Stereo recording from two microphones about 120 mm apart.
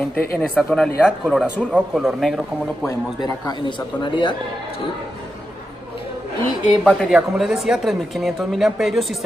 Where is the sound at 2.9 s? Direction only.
30° left (ahead or behind).